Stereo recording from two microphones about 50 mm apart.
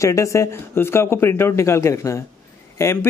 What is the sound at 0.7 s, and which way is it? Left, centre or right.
A man's voice, left.